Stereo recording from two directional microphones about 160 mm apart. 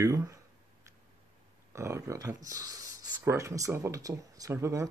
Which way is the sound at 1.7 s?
15° right (ahead or behind).